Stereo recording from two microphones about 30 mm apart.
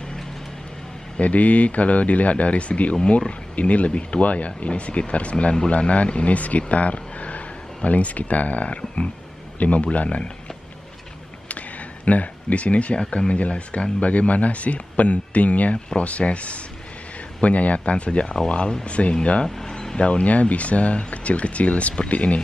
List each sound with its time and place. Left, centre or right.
1.1 s speech: left
12.0 s speech: left
18.2 s speech: centre
18.9 s speech: left
19.4 s a sound: centre
20.0 s speech: left
20.2 s speech: left